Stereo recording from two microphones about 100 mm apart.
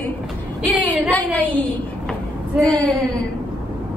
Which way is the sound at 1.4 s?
15° left (ahead or behind).